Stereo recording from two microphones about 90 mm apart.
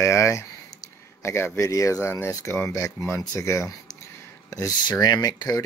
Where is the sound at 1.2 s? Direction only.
30° left (ahead or behind).